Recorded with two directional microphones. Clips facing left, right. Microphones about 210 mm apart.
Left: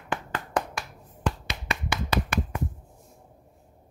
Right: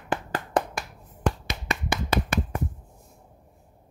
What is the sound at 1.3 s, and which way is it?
Finger snapping, 50° right (ahead or behind).